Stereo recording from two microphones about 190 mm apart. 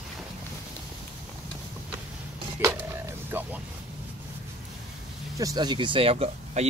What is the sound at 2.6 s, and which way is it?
Music, 10° right (ahead or behind).